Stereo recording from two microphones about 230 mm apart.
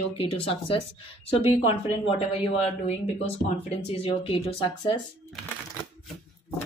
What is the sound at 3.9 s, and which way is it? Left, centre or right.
Speech, left.